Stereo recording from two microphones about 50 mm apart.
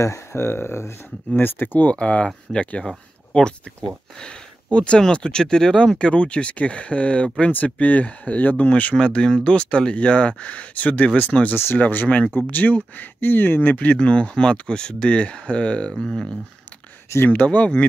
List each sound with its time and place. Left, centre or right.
0.0 s speech: left
1.3 s speech: left
2.0 s speech: left
4.2 s speech: centre
5.9 s speech: left
9.0 s speech: centre
11.5 s speech: left
11.8 s speech: left
13.9 s speech: left
15.9 s speech: centre
17.3 s speech: left